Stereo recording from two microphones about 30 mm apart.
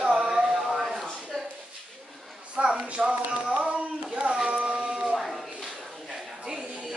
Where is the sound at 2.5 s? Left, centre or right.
Right.